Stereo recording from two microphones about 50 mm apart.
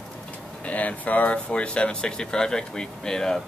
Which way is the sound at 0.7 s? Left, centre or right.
Left.